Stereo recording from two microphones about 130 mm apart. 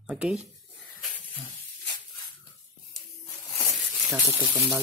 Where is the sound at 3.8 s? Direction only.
10° right (ahead or behind).